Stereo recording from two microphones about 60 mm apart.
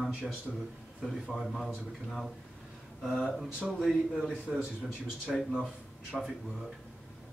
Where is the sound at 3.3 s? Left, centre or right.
Centre.